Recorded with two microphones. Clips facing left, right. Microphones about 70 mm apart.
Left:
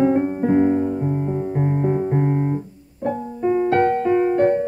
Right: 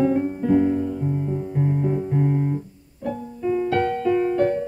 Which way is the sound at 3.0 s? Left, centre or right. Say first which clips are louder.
Left 4 dB; left.